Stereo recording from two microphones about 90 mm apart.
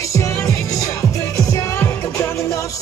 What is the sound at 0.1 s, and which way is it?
Music, 35° left (ahead or behind).